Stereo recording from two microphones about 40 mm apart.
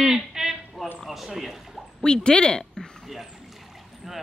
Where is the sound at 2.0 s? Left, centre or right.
Left.